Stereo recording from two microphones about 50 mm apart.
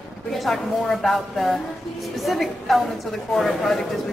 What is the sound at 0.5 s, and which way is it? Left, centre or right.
A woman's voice, centre.